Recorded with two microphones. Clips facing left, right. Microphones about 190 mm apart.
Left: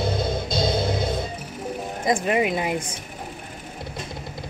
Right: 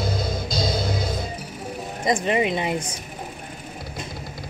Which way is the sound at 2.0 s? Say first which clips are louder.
Even; 5° left (ahead or behind).